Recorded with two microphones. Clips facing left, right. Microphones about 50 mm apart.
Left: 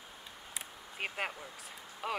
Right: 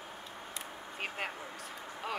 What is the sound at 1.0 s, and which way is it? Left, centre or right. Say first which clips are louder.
Speech: left 1 dB; centre.